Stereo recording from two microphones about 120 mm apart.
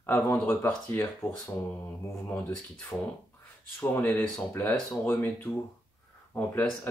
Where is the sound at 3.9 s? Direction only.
15° left (ahead or behind).